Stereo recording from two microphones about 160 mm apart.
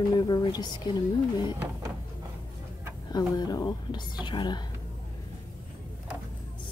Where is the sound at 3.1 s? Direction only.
25° left (ahead or behind).